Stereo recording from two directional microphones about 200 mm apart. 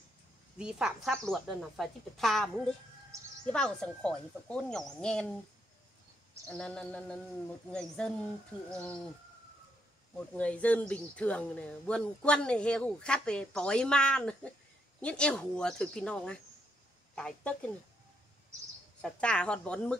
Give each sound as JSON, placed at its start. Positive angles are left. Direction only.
{"t": 0.6, "sound": "speech", "side_deg": -5}
{"t": 3.1, "sound": "speech", "side_deg": -15}
{"t": 3.5, "sound": "speech", "side_deg": 5}
{"t": 6.5, "sound": "speech", "side_deg": 5}
{"t": 10.1, "sound": "speech", "side_deg": 5}
{"t": 18.9, "sound": "speech", "side_deg": 5}